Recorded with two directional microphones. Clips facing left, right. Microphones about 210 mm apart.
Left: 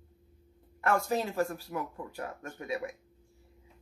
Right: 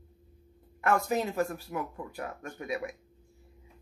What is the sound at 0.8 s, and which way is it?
Speech, 20° right (ahead or behind).